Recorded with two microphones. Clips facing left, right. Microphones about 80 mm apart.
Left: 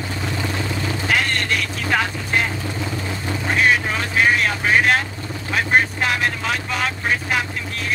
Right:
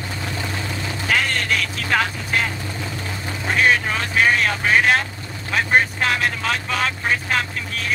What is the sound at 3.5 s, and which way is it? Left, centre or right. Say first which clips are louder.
Vehicle: even; centre.